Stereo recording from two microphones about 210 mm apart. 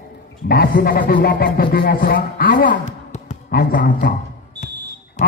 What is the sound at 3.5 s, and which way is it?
Music, 45° left (ahead or behind).